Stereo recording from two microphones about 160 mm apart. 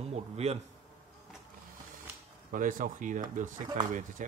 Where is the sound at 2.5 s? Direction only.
55° right (ahead or behind).